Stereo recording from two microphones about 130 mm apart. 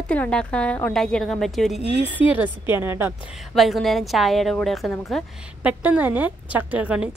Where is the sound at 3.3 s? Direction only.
Centre (ahead or behind).